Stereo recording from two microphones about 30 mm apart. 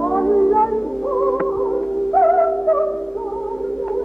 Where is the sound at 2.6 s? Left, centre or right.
Left.